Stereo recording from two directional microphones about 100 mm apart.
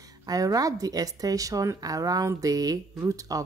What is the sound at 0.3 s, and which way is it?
Speech, 35° right (ahead or behind).